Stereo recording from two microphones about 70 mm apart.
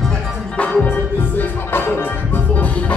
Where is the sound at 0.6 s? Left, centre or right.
Left.